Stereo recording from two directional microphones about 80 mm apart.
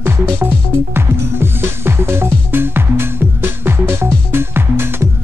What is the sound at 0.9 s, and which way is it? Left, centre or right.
Music, right.